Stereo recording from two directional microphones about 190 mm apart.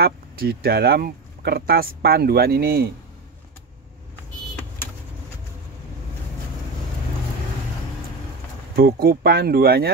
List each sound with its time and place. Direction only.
0.0 s speech: 55° right (ahead or behind)
8.7 s speech: 50° right (ahead or behind)